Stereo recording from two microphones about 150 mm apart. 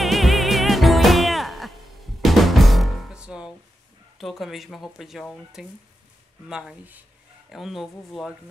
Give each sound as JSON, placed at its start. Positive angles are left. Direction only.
{"t": 0.0, "sound": "music", "side_deg": 0}
{"t": 2.2, "sound": "drum", "side_deg": 0}
{"t": 4.2, "sound": "speech", "side_deg": 0}